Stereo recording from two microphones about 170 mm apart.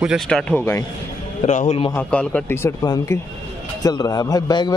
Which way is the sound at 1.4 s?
40° left (ahead or behind).